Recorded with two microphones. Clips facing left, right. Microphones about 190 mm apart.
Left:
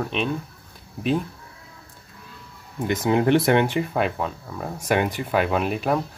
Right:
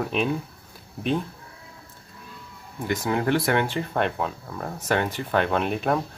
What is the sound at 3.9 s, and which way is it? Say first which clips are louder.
Speech: left 1 dB; centre (ahead or behind).